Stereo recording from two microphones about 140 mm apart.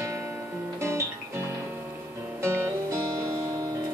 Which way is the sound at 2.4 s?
20° right (ahead or behind).